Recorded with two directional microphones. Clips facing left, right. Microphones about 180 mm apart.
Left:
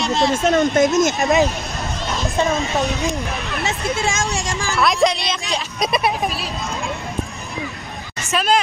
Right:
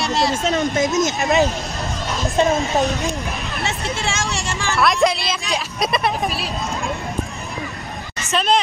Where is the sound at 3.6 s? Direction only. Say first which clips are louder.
Left 3 dB; 15° left (ahead or behind).